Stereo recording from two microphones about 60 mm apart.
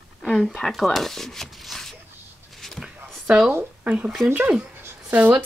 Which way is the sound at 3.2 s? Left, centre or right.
Centre.